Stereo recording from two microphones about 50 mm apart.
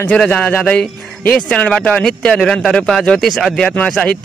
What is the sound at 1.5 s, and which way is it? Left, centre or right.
Speech, centre.